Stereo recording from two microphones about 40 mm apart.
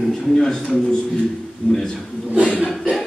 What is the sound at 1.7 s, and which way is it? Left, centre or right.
Speech, centre.